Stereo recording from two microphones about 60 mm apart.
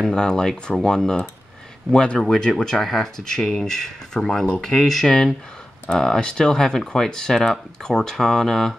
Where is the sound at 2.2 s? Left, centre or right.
Centre.